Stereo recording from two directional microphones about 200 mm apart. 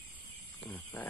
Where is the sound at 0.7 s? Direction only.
10° left (ahead or behind).